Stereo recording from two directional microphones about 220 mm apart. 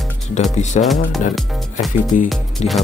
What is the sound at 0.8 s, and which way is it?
Speech, centre (ahead or behind).